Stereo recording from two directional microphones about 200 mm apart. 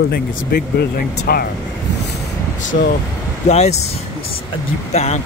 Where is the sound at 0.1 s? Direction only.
45° left (ahead or behind).